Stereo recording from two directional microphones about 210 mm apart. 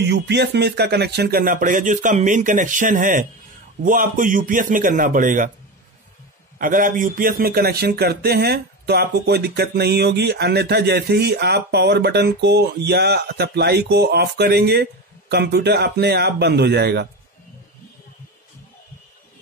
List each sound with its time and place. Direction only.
0.0 s speech: 55° right (ahead or behind)
6.6 s speech: 40° right (ahead or behind)